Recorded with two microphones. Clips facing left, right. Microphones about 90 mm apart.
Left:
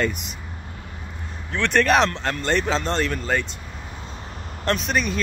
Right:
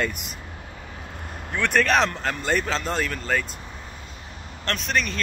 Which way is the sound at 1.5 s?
10° right (ahead or behind).